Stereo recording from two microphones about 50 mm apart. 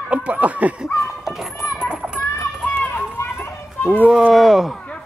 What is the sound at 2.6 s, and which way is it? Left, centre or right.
Run, left.